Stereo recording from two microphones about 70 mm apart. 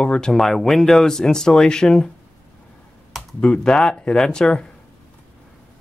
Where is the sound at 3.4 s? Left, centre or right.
Centre.